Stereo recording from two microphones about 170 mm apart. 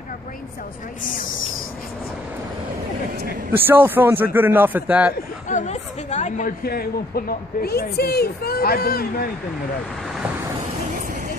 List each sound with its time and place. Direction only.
3.5 s a man's voice: 10° right (ahead or behind)
5.5 s a woman's voice: 45° left (ahead or behind); by 9.3 s 60° left (ahead or behind)